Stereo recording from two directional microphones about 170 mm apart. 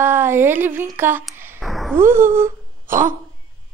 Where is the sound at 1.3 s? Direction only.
15° right (ahead or behind).